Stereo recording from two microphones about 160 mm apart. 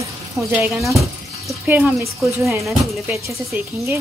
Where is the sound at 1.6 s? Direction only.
10° right (ahead or behind).